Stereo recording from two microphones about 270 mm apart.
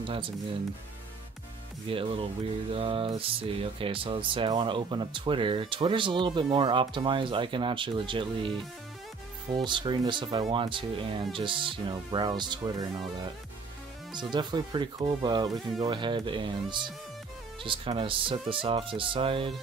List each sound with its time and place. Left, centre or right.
0.0 s speech: centre
1.9 s speech: centre
14.1 s speech: centre